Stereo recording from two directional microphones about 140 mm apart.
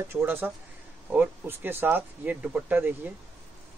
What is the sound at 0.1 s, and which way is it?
Speech, 15° right (ahead or behind).